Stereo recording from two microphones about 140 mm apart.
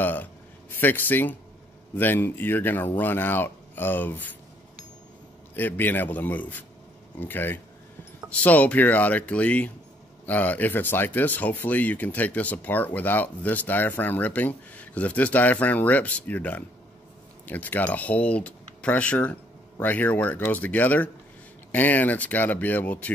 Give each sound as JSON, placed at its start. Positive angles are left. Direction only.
{"t": 0.0, "sound": "a man's voice", "side_deg": 10}
{"t": 5.6, "sound": "speech", "side_deg": 15}